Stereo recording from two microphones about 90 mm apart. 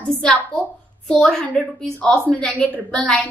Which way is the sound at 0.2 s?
10° left (ahead or behind).